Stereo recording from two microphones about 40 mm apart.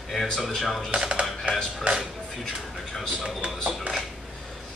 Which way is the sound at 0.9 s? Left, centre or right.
Right.